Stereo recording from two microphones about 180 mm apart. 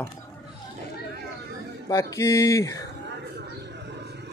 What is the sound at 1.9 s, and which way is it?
Speech, 15° left (ahead or behind).